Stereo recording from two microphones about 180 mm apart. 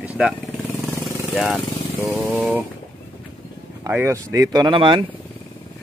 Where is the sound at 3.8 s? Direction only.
15° right (ahead or behind).